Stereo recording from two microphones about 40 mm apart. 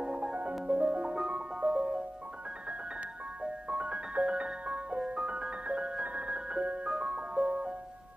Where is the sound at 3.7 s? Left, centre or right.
Right.